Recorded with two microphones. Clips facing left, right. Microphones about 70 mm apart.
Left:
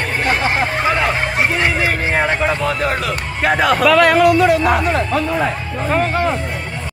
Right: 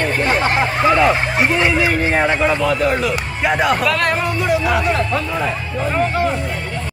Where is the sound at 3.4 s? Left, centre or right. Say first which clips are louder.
Left 3 dB; left.